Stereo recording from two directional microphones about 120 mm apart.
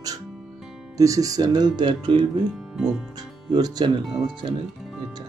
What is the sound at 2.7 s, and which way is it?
Speech, 5° right (ahead or behind).